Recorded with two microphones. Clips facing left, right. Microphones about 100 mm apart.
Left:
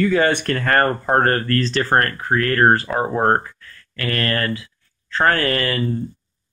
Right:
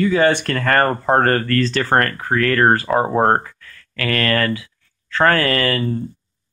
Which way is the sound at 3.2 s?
25° right (ahead or behind).